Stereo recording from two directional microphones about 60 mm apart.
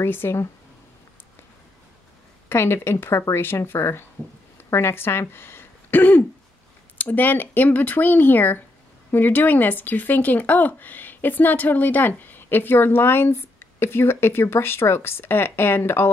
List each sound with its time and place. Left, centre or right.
0.0 s speech: left
2.5 s speech: left
5.3 s a sound: left
7.0 s speech: left